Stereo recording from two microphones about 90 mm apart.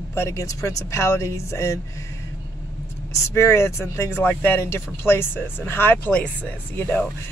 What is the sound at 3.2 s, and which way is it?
Speech, 30° left (ahead or behind).